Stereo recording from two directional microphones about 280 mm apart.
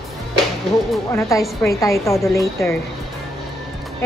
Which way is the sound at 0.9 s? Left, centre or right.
Centre.